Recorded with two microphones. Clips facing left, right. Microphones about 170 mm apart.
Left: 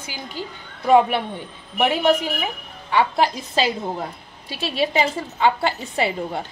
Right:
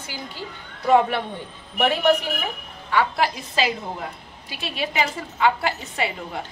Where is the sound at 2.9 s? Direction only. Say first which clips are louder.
Left 2 dB; 25° left (ahead or behind).